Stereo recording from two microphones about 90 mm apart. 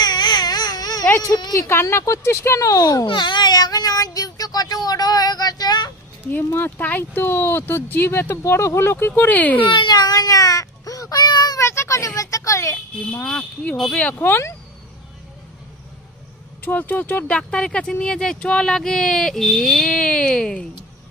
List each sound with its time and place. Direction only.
0.0 s baby cry: 50° left (ahead or behind)
1.5 s a child's voice: 30° left (ahead or behind)
3.1 s speech: 60° left (ahead or behind)
6.2 s speech: 20° left (ahead or behind)
9.7 s baby cry: 55° left (ahead or behind)
11.6 s a sound: 30° left (ahead or behind)
12.2 s a child's voice: 40° left (ahead or behind)
13.2 s speech: 10° left (ahead or behind)
14.2 s speech: 25° left (ahead or behind)
16.6 s speech: 20° left (ahead or behind)
17.4 s speech: 10° left (ahead or behind)